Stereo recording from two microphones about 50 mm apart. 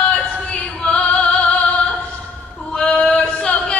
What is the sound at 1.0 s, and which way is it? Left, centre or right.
Music, left.